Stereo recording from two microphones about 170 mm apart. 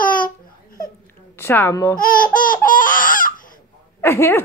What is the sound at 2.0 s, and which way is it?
Laughter, 55° left (ahead or behind).